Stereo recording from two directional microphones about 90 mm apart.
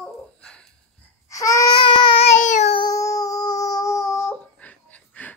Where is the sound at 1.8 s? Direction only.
65° left (ahead or behind).